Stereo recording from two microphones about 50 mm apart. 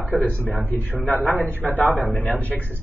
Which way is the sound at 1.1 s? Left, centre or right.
Right.